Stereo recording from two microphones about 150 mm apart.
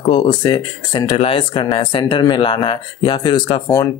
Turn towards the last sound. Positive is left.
turn(degrees=20)  # may be behind; listen again after turning